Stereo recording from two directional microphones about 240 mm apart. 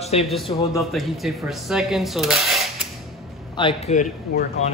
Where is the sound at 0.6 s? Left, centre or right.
Centre.